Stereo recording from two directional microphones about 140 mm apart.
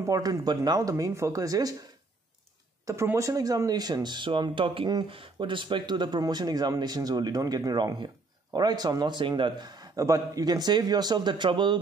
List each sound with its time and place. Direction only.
0.0 s speech: 25° right (ahead or behind)
2.8 s speech: 20° right (ahead or behind)